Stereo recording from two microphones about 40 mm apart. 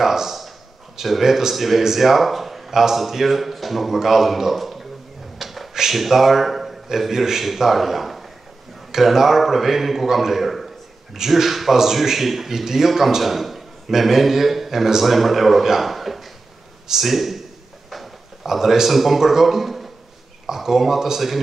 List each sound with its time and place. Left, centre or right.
0.0 s a man's voice: centre
17.8 s a sound: centre
20.4 s a man's voice: centre